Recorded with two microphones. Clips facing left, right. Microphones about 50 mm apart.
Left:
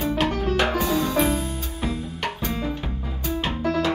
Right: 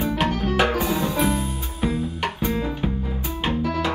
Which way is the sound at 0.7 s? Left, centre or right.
Right.